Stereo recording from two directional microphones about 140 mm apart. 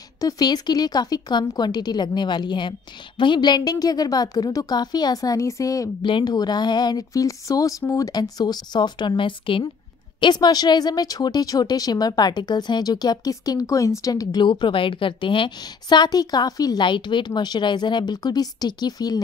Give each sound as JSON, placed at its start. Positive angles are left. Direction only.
{"t": 0.2, "sound": "speech", "side_deg": 25}